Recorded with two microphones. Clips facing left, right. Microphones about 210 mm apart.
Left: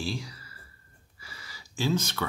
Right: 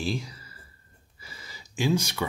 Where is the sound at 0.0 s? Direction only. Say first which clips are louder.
Right 3 dB; 20° right (ahead or behind).